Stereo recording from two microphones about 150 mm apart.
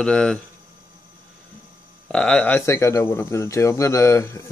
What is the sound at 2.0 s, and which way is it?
Speech, 5° left (ahead or behind).